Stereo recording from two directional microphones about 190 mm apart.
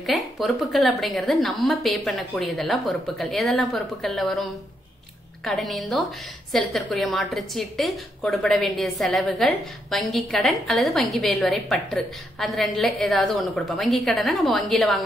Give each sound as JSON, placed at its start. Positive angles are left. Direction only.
{"t": 0.0, "sound": "a woman's voice", "side_deg": 0}